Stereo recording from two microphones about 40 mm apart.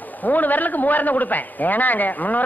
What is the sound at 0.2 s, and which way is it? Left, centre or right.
A man's voice, left.